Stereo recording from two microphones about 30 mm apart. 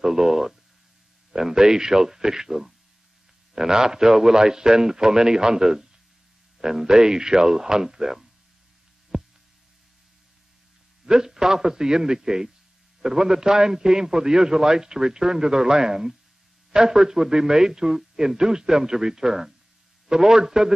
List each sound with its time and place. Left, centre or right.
0.0 s a man's voice: centre
9.1 s a sound: right
11.1 s a man's voice: right